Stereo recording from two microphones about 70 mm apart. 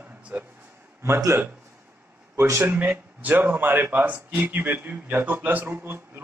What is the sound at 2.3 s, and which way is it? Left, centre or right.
Speech, right.